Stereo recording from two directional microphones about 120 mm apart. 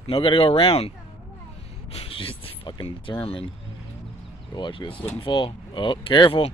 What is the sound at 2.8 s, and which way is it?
Speech, 50° left (ahead or behind).